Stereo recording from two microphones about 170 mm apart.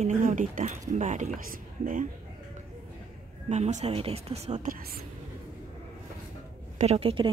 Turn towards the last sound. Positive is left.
turn(degrees=-35)  # may be behind; listen again after turning